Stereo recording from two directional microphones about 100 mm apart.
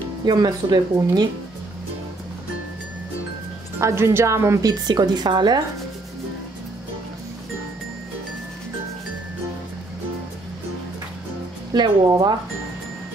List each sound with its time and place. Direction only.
0.2 s speech: 45° right (ahead or behind)
3.8 s a woman's voice: 25° right (ahead or behind); by 5.6 s 45° right (ahead or behind)
11.7 s speech: 45° right (ahead or behind)